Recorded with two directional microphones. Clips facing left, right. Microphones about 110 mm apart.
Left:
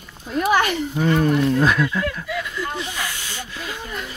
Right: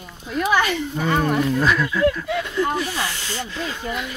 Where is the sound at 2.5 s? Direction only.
45° right (ahead or behind).